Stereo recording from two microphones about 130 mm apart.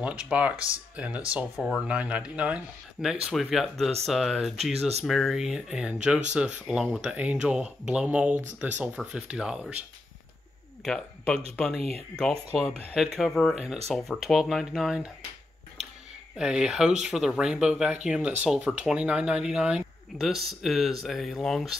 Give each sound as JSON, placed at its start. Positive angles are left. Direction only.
{"t": 0.0, "sound": "speech", "side_deg": -10}
{"t": 10.8, "sound": "speech", "side_deg": 5}
{"t": 16.3, "sound": "speech", "side_deg": -5}